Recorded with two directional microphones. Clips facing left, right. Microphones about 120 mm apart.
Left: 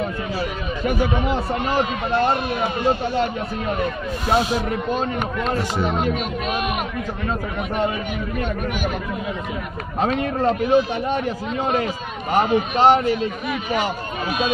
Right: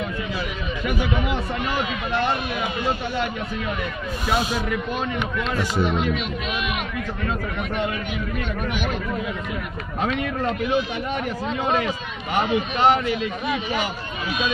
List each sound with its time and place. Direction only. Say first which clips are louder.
0.0 s speech: left 3 dB; 40° left (ahead or behind)
9.9 s speech: left 4 dB; 40° left (ahead or behind)